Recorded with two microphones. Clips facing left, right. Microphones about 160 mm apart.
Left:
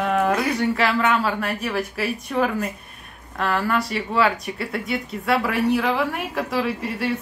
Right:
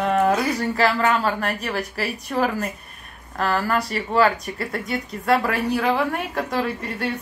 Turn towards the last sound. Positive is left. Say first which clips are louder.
# left 1 dB
turn(degrees=5)  # may be behind; listen again after turning